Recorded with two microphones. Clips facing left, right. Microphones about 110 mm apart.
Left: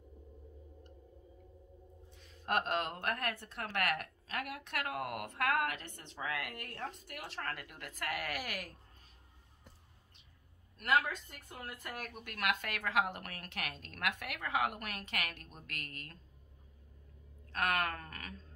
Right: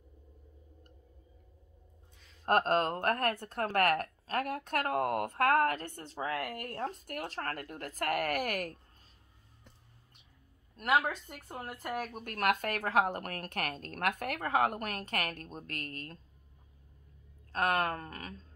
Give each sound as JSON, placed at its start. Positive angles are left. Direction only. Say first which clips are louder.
{"t": 2.4, "sound": "a woman's voice", "louder": "right 7 dB", "side_deg": -40}
{"t": 11.4, "sound": "a woman's voice", "louder": "right 8 dB", "side_deg": -40}
{"t": 17.5, "sound": "a woman's voice", "louder": "right 4 dB", "side_deg": -35}